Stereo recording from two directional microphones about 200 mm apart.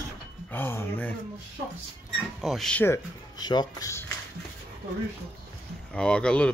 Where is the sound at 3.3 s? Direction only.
20° left (ahead or behind).